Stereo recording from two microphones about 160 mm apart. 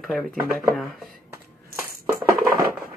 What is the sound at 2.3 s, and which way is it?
Crushing, 65° right (ahead or behind).